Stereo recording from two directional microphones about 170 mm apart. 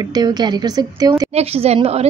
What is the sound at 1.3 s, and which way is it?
Speech, 35° right (ahead or behind).